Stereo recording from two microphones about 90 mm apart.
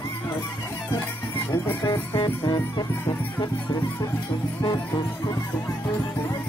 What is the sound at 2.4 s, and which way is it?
Music, 50° left (ahead or behind).